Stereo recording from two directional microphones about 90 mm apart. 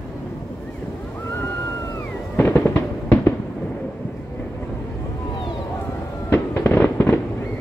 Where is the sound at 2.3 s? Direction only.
25° left (ahead or behind).